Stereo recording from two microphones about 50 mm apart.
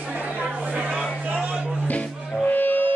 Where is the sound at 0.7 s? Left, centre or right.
Centre.